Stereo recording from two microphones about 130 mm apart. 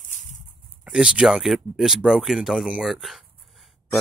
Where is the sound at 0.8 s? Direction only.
5° right (ahead or behind).